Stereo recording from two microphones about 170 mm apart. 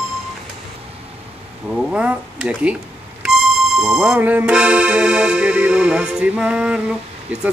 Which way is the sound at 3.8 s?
5° right (ahead or behind).